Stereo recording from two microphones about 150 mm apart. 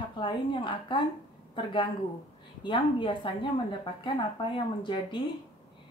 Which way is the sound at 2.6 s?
35° left (ahead or behind).